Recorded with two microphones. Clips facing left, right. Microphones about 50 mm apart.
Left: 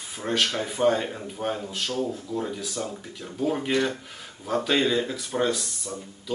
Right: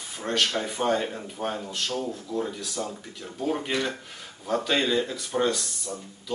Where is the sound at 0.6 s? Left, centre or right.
Centre.